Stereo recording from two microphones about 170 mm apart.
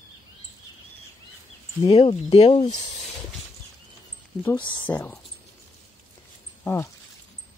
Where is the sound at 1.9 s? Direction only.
40° left (ahead or behind).